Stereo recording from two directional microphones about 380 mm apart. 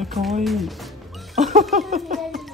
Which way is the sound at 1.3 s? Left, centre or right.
Centre.